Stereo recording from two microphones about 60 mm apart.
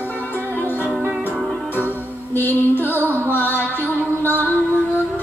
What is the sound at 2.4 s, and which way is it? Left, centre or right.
Music, left.